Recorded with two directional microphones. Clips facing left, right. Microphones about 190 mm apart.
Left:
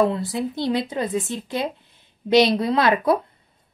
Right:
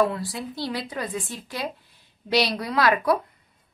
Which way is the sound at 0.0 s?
20° left (ahead or behind).